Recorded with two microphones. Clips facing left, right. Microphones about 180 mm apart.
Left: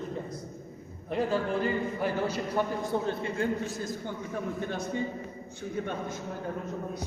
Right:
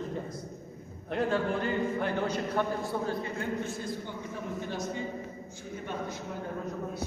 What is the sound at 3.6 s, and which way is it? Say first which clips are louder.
Speech: left 1 dB; 40° left (ahead or behind).